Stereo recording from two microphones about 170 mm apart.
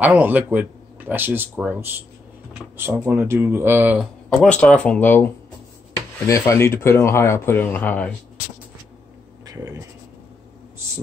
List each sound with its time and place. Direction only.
0.0 s speech: 10° right (ahead or behind)
4.0 s speech: 5° left (ahead or behind)
9.5 s speech: 20° right (ahead or behind)